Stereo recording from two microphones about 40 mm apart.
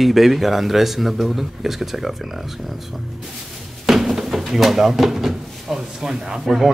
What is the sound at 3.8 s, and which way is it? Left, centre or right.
Drawer open or close, centre.